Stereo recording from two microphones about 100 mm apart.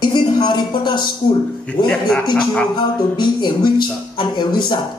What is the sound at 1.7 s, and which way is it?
Speech, 15° left (ahead or behind).